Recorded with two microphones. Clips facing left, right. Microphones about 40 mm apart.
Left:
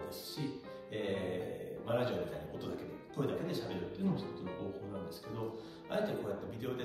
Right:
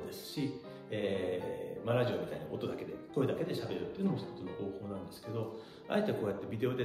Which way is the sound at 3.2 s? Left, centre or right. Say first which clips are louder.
Right 3 dB; right.